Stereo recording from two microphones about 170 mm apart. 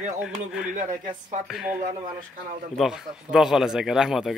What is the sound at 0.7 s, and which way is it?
Speech, 50° right (ahead or behind).